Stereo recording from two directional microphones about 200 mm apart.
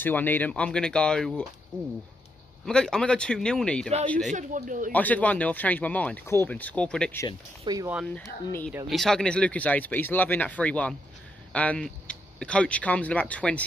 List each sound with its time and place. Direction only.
0.0 s speech: 10° left (ahead or behind)
4.3 s speech: 40° right (ahead or behind)
4.9 s speech: 10° left (ahead or behind)
7.6 s speech: 20° right (ahead or behind)
8.1 s speech: 10° left (ahead or behind)